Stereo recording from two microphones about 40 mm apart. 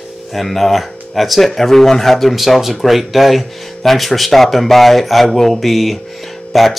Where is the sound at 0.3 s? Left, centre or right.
Centre.